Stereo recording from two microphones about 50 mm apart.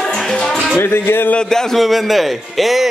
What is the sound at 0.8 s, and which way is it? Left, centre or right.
Music, left.